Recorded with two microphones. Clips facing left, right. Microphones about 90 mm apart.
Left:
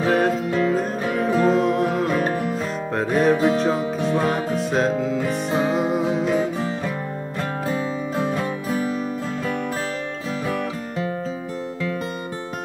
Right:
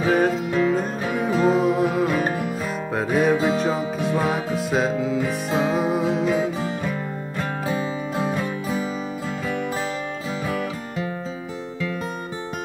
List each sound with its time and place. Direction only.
0.0 s music: centre (ahead or behind)
7.6 s music: 10° right (ahead or behind)